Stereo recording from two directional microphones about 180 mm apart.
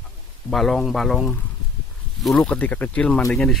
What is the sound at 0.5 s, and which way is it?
Speech, centre (ahead or behind).